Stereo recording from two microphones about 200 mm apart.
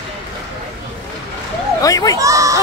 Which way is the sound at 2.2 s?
15° right (ahead or behind).